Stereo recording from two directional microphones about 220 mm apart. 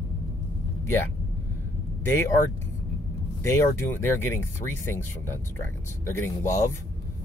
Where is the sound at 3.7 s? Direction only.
10° left (ahead or behind).